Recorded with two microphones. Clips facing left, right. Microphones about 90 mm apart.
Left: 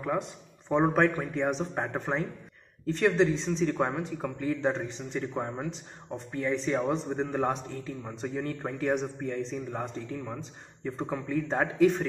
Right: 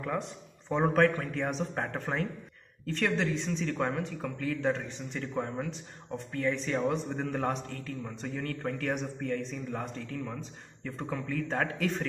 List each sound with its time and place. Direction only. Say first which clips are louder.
0.7 s a man's voice: left 1 dB; 15° left (ahead or behind)